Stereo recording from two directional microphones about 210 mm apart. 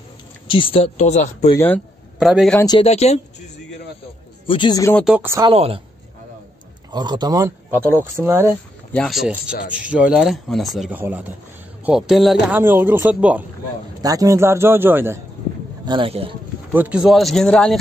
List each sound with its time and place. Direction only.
0.5 s speech: 25° left (ahead or behind)
2.1 s speech: centre (ahead or behind)
2.6 s speech: 20° left (ahead or behind)
2.9 s speech: 30° left (ahead or behind)
4.5 s speech: 20° left (ahead or behind)
4.9 s speech: 5° right (ahead or behind)
5.5 s speech: 25° right (ahead or behind)
6.9 s speech: 20° right (ahead or behind)
8.9 s speech: centre (ahead or behind)
15.8 s a man's voice: 25° right (ahead or behind)
16.7 s speech: 5° right (ahead or behind)